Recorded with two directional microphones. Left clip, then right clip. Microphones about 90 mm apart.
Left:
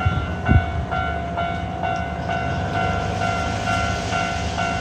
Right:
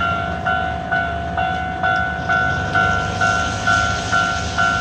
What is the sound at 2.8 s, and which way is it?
Train, 20° right (ahead or behind).